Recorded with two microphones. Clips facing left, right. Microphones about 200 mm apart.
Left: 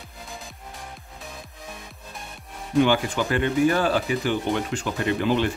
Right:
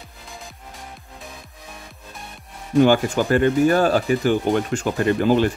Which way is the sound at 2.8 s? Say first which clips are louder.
Right 5 dB; 45° right (ahead or behind).